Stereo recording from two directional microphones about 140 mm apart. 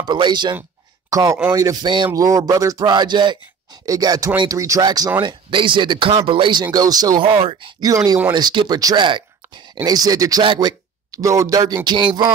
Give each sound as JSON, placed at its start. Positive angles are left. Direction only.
{"t": 0.0, "sound": "speech", "side_deg": -30}
{"t": 7.9, "sound": "speech", "side_deg": -25}
{"t": 10.4, "sound": "speech", "side_deg": -35}
{"t": 11.1, "sound": "speech", "side_deg": -25}